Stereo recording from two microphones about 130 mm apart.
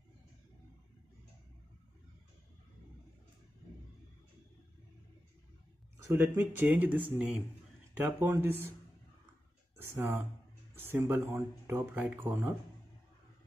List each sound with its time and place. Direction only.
6.0 s speech: 20° right (ahead or behind)
9.8 s speech: 15° right (ahead or behind)